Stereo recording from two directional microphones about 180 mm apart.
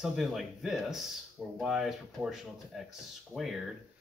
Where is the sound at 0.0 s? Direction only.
Centre (ahead or behind).